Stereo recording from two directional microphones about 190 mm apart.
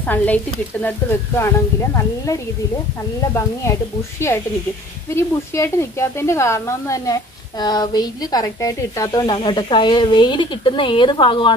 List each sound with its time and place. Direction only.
0.0 s speech: 10° left (ahead or behind)
5.1 s speech: 15° left (ahead or behind)